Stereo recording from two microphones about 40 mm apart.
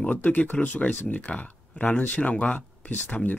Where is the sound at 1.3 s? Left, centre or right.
Left.